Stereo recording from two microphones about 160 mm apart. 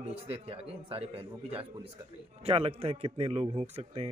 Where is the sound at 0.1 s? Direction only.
40° right (ahead or behind).